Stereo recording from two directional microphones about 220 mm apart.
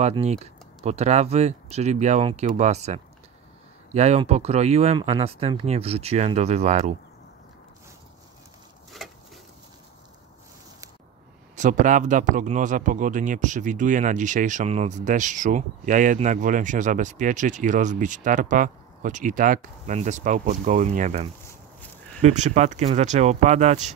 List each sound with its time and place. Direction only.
0.0 s speech: 30° right (ahead or behind)
9.0 s a sound: centre (ahead or behind)
11.5 s speech: 35° right (ahead or behind)